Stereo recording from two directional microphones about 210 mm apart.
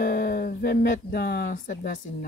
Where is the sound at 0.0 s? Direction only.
45° left (ahead or behind).